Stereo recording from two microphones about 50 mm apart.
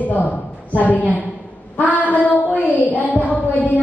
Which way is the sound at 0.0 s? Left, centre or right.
Left.